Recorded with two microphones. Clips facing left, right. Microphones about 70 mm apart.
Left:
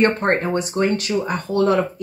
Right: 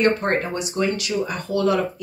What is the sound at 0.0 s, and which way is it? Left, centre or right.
Speech, left.